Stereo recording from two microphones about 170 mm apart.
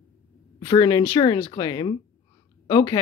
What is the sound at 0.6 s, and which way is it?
A woman's voice, 25° left (ahead or behind).